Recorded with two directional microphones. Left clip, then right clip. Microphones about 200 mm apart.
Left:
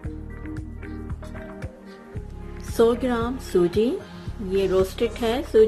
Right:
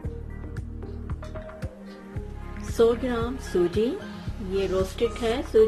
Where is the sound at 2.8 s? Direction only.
20° left (ahead or behind).